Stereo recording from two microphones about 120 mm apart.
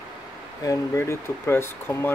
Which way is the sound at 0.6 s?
25° left (ahead or behind).